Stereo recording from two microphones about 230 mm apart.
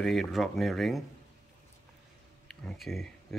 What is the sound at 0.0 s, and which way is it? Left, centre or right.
Speech, centre.